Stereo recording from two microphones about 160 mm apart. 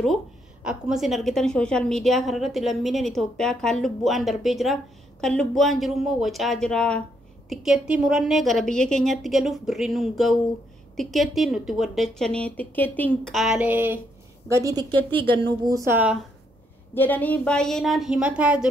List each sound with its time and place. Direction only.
0.7 s a woman's voice: 5° right (ahead or behind)
14.5 s a woman's voice: 20° right (ahead or behind)
16.9 s a woman's voice: 10° left (ahead or behind); by 18.7 s 5° right (ahead or behind)